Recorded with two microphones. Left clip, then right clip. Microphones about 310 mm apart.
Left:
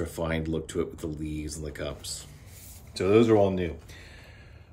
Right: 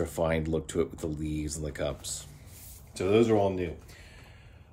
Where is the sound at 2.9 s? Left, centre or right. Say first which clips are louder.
Left 3 dB; centre.